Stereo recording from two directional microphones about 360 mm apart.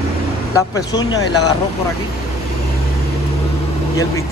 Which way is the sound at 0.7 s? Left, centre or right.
Centre.